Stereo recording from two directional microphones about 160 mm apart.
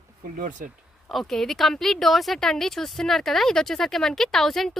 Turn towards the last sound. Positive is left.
turn(degrees=0)  # may be behind; listen again after turning